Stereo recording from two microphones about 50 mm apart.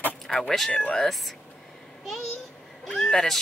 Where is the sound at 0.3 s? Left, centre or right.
Centre.